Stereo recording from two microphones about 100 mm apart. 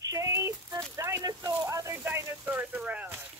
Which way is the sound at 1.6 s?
30° right (ahead or behind).